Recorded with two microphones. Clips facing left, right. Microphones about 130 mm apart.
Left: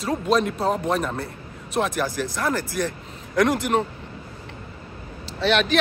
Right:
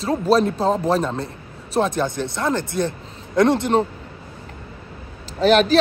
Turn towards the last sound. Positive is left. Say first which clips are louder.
# right 6 dB
turn(degrees=-40)  # may be behind; listen again after turning